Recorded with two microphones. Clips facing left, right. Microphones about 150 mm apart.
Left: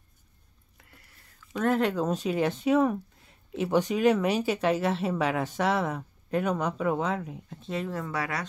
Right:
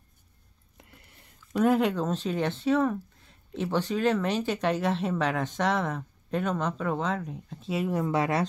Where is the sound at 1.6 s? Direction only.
Centre (ahead or behind).